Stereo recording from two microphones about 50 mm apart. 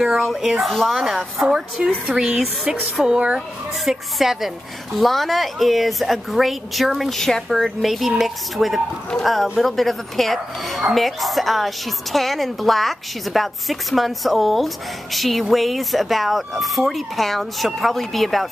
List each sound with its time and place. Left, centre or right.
0.2 s a woman's voice: centre
3.1 s speech: right
3.3 s a woman's voice: centre